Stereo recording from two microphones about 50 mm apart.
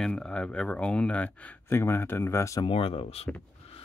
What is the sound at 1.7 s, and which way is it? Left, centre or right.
Speech, left.